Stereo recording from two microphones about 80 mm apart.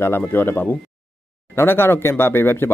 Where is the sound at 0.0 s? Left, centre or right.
Left.